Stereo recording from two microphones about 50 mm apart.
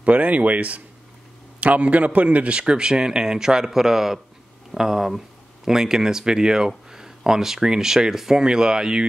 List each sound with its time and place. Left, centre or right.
0.0 s a man's voice: right; by 9.0 s centre